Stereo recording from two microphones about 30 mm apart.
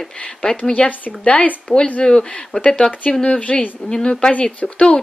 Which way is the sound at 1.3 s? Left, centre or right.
Left.